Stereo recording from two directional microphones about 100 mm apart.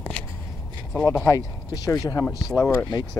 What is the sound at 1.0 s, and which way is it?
Speech, 30° left (ahead or behind).